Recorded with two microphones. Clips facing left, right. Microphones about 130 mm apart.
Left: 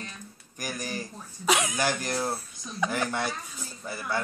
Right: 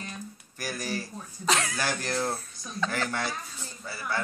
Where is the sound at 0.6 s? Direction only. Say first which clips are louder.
Right 1 dB; 15° left (ahead or behind).